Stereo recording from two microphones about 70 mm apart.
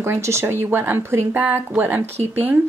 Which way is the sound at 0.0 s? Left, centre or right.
Right.